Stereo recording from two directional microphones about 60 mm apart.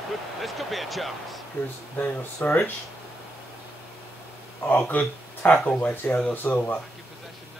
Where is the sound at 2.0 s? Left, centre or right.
Left.